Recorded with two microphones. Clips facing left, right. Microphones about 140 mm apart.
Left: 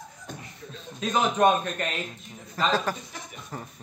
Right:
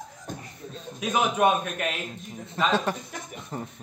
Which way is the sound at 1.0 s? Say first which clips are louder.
Left 1 dB; 10° right (ahead or behind).